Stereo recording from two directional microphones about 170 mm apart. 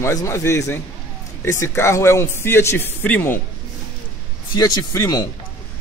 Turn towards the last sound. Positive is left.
turn(degrees=20)  # may be behind; listen again after turning